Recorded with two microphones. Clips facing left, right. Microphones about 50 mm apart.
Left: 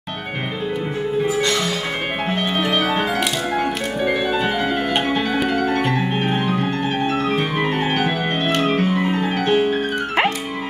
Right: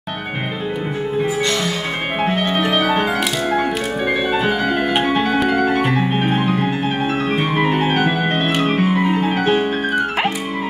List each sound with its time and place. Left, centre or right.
2.2 s music: centre